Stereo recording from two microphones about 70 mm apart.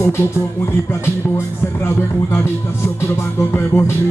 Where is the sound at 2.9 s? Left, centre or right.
Left.